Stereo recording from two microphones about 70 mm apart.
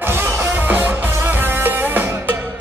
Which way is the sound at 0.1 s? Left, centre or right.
Right.